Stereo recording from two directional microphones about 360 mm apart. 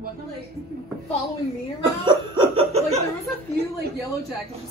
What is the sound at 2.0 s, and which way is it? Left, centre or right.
Laughter, centre.